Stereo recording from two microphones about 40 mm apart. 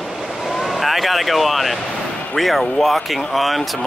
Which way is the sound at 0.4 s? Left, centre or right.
Centre.